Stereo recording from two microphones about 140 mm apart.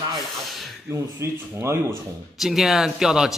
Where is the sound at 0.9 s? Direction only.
20° right (ahead or behind).